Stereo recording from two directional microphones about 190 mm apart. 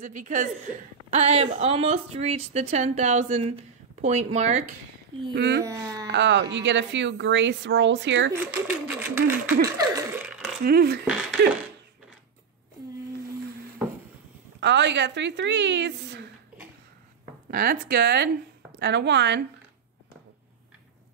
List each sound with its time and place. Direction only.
0.0 s speech: 40° right (ahead or behind)
5.3 s speech: 65° right (ahead or behind)
5.6 s speech: 15° right (ahead or behind)
6.0 s a woman's voice: 70° right (ahead or behind)
8.3 s speech: 10° right (ahead or behind)
9.8 s a sound: 20° right (ahead or behind)
10.6 s speech: 55° right (ahead or behind)
11.4 s speech: 65° right (ahead or behind)
14.6 s a woman's voice: 70° right (ahead or behind)
17.5 s a woman's voice: 50° right (ahead or behind); by 19.4 s 65° right (ahead or behind)